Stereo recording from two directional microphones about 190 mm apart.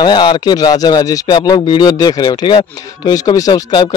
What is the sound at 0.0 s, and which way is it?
Speech, 25° left (ahead or behind).